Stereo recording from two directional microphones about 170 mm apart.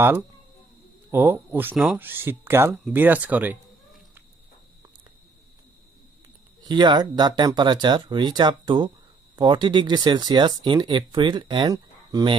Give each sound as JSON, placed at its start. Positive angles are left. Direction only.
{"t": 1.1, "sound": "speech", "side_deg": -15}
{"t": 2.9, "sound": "a sound", "side_deg": -10}
{"t": 6.6, "sound": "speech", "side_deg": -25}